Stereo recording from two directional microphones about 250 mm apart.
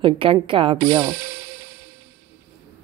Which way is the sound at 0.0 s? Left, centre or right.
Right.